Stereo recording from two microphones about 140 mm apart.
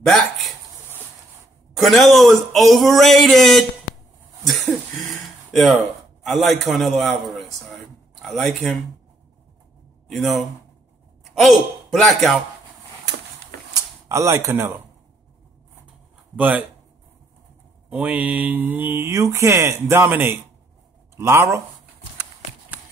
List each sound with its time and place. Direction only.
0.0 s a sound: centre (ahead or behind)
1.7 s speech: centre (ahead or behind)
11.3 s speech: centre (ahead or behind)
13.7 s speech: 20° right (ahead or behind)
16.3 s mantra: 10° right (ahead or behind)
17.8 s mantra: 10° right (ahead or behind)
21.2 s speech: 20° right (ahead or behind)